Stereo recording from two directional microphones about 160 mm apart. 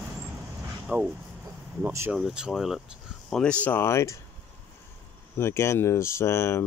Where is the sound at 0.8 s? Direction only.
5° right (ahead or behind).